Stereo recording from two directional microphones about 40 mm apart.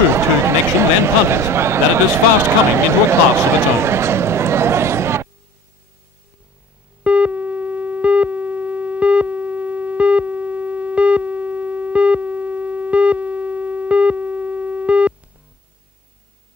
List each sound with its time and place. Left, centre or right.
0.1 s speech: right
7.0 s busy signal: right